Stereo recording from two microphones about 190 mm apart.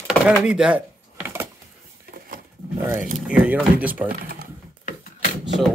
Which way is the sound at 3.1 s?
5° right (ahead or behind).